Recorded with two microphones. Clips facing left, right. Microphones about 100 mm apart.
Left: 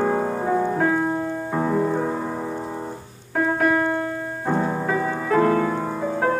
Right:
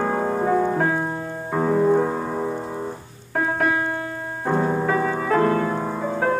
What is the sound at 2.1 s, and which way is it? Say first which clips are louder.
Music: right 2 dB; 15° right (ahead or behind).